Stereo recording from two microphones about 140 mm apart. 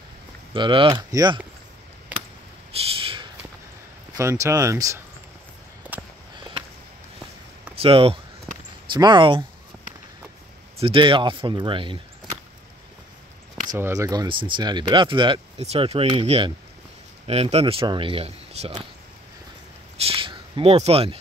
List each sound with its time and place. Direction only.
0.5 s speech: 35° right (ahead or behind)
2.9 s a sound: 40° right (ahead or behind)
4.2 s speech: 20° right (ahead or behind)
7.7 s speech: 40° right (ahead or behind)
10.8 s speech: 40° right (ahead or behind)
13.7 s speech: 20° right (ahead or behind); by 18.7 s 45° right (ahead or behind)
20.0 s a sound: 40° right (ahead or behind)
20.7 s speech: 45° right (ahead or behind)